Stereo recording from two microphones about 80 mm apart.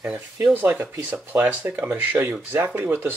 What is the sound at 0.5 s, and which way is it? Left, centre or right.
Speech, right.